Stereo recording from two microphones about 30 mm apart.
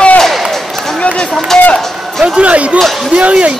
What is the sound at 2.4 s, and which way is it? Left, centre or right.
Speech, right.